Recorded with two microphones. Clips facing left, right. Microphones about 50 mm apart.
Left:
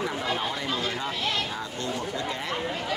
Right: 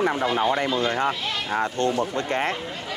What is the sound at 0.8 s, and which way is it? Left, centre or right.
Speech, right.